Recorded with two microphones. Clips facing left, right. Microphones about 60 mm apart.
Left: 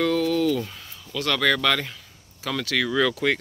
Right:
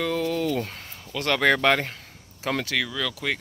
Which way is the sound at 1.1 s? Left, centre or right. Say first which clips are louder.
Right 1 dB; right.